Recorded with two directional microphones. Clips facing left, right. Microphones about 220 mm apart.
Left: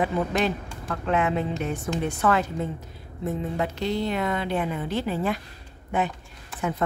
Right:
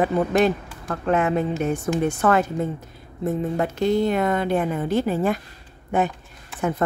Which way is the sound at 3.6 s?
50° right (ahead or behind).